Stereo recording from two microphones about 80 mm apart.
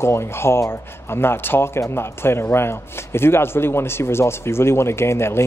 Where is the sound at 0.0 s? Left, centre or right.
Left.